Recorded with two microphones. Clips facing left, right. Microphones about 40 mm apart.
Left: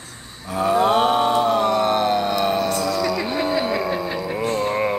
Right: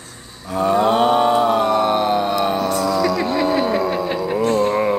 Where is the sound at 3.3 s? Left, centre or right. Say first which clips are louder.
Right 4 dB; right.